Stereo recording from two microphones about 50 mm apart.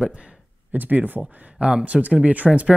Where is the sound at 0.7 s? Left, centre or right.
Right.